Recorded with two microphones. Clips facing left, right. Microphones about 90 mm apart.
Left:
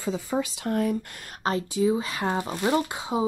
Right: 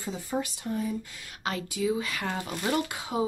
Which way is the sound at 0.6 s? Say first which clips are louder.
Left 6 dB; 70° left (ahead or behind).